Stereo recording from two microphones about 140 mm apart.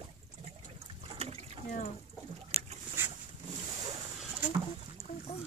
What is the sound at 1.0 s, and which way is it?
Liquid, 50° right (ahead or behind).